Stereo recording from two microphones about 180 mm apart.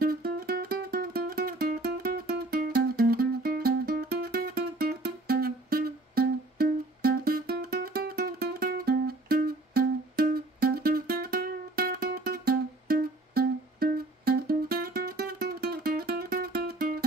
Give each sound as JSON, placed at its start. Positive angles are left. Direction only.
{"t": 0.0, "sound": "music", "side_deg": -55}